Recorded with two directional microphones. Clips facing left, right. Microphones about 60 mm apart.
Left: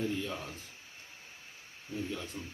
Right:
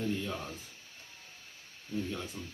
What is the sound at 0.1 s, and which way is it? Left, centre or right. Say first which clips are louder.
Speech: right 1 dB; centre.